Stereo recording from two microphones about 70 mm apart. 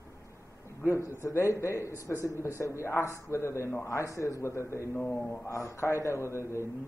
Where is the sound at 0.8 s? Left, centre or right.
Left.